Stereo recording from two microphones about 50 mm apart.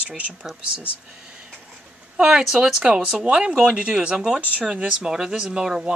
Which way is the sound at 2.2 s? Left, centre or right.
Centre.